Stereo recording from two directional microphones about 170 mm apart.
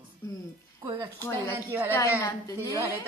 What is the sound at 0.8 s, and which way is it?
Speech, 25° right (ahead or behind).